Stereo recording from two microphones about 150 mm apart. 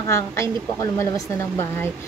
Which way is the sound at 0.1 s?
20° left (ahead or behind).